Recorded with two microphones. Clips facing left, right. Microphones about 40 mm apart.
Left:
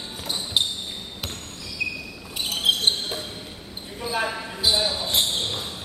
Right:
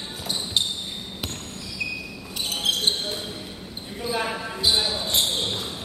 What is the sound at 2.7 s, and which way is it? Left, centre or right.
Basketball bounce, left.